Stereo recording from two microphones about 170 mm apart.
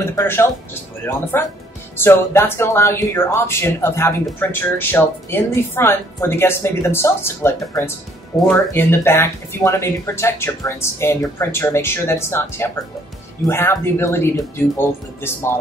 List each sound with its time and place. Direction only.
0.1 s speech: 15° left (ahead or behind)